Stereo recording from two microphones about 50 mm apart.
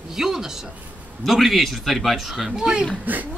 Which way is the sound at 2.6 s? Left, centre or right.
Centre.